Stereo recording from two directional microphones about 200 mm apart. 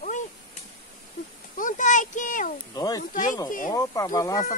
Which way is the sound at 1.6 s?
40° left (ahead or behind).